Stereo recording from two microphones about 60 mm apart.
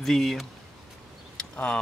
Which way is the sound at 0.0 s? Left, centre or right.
Centre.